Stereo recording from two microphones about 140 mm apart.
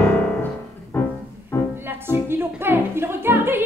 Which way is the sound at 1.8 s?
15° right (ahead or behind).